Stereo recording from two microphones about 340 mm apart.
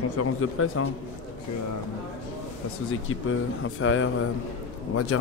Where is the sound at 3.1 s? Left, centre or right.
Left.